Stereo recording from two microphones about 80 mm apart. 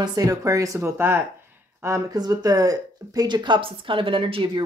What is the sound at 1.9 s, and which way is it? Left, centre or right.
Speech, right.